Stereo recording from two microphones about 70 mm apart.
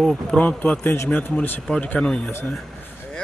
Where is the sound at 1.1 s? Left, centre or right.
Left.